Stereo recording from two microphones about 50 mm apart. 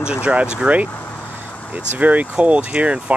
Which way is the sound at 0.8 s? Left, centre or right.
Left.